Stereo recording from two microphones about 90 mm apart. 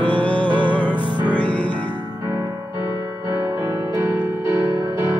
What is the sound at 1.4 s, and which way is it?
Music, 15° left (ahead or behind).